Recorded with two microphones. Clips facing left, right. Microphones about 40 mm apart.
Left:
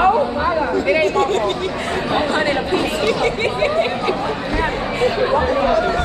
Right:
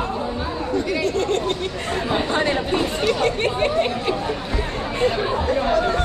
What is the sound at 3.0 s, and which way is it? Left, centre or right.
Chatter, left.